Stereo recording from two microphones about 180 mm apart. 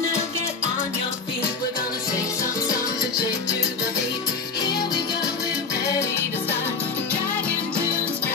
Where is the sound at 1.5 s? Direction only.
20° left (ahead or behind).